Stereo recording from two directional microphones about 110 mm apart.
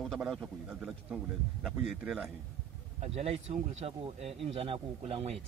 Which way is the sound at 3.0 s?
75° right (ahead or behind).